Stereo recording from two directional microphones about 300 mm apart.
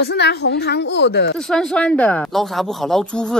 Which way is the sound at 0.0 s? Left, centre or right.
Left.